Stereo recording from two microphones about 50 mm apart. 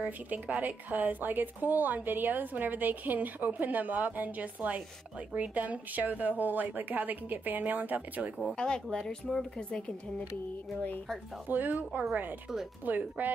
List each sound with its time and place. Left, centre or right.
0.0 s speech: right
8.5 s speech: centre
11.4 s speech: right